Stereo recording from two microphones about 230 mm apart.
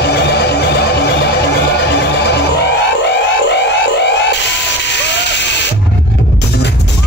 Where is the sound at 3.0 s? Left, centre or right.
Left.